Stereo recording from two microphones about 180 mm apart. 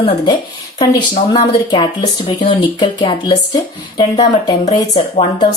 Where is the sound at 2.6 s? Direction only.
25° left (ahead or behind).